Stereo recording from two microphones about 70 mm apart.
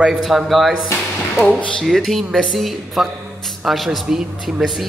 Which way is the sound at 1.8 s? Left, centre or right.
Centre.